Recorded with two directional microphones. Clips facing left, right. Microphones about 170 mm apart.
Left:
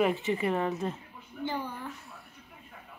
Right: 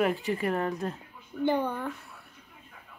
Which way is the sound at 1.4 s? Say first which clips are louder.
Right 8 dB; 60° right (ahead or behind).